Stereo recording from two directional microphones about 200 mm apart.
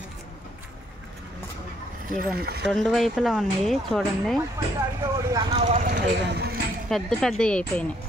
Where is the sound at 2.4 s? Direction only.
50° right (ahead or behind).